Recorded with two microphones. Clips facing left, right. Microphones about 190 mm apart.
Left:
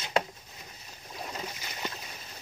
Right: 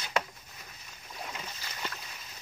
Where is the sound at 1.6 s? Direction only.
20° left (ahead or behind).